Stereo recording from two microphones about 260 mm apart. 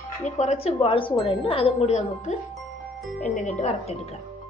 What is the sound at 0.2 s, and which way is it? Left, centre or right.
A woman's voice, left.